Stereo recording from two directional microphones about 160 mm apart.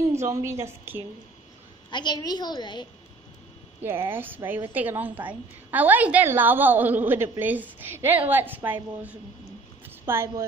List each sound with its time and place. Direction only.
0.1 s a woman's voice: 20° right (ahead or behind)
1.9 s a woman's voice: 30° left (ahead or behind)
3.8 s a woman's voice: 15° right (ahead or behind)
9.8 s a sound: 15° right (ahead or behind)